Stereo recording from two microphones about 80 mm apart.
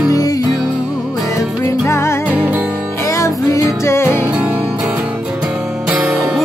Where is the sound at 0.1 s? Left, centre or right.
Left.